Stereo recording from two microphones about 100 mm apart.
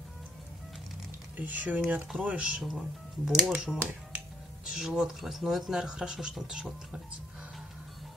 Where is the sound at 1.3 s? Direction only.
15° right (ahead or behind).